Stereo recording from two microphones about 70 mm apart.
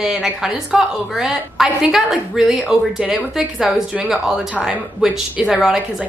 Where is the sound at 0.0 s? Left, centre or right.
Centre.